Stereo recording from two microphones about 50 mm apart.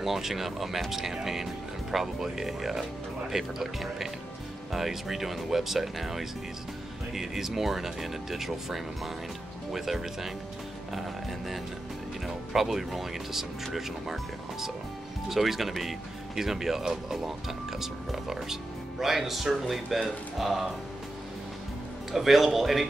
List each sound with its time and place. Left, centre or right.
0.0 s speech: centre
22.1 s speech: centre